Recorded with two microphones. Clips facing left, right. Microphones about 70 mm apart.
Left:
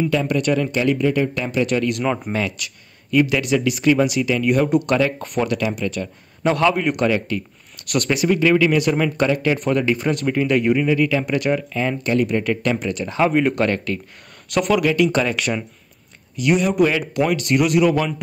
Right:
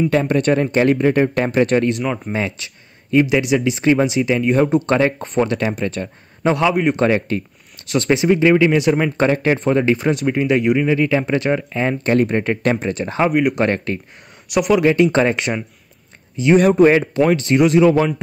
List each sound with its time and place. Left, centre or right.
0.1 s speech: right
2.3 s a man's voice: right
6.5 s a man's voice: centre
13.3 s speech: centre
13.6 s a man's voice: right
14.5 s speech: centre
14.8 s a man's voice: right
16.5 s a man's voice: right